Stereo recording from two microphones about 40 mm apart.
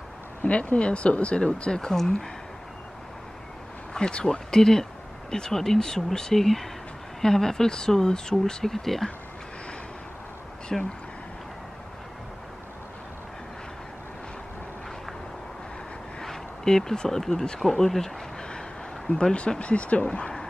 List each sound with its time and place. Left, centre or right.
0.4 s speech: left
0.7 s speech: left
3.9 s speech: left
8.7 s speech: centre
10.7 s speech: centre
16.2 s a sound: centre
17.6 s speech: centre
19.0 s speech: left